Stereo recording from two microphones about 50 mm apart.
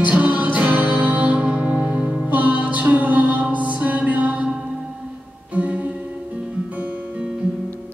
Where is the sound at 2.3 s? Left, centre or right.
Right.